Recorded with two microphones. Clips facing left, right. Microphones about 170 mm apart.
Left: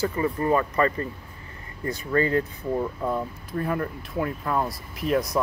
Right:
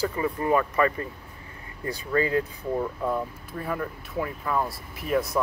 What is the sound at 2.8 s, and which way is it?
Speech, 5° left (ahead or behind).